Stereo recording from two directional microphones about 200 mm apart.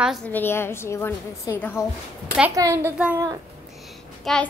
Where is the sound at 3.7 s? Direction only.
Centre (ahead or behind).